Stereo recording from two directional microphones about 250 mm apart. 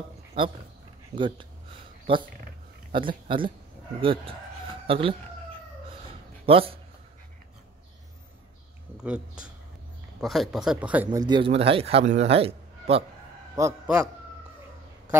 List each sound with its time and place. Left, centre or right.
0.4 s speech: centre
6.4 s speech: right
8.9 s speech: centre
11.1 s speech: centre
13.6 s a man's voice: centre